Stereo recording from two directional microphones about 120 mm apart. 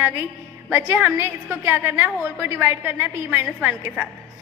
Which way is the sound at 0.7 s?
15° right (ahead or behind).